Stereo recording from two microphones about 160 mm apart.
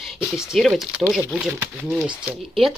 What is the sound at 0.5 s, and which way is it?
Speech, centre (ahead or behind).